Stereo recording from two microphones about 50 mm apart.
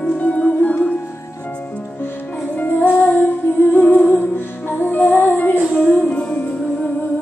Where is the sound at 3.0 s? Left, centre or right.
Left.